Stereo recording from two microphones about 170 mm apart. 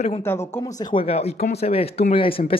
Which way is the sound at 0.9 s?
35° left (ahead or behind).